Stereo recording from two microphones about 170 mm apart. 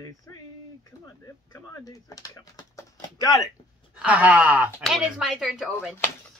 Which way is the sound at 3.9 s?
10° right (ahead or behind).